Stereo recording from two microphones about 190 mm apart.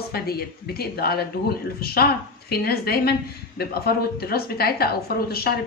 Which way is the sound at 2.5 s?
55° left (ahead or behind).